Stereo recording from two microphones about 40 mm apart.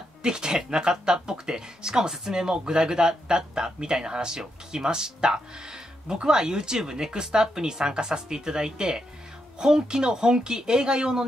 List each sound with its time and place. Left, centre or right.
0.2 s speech: centre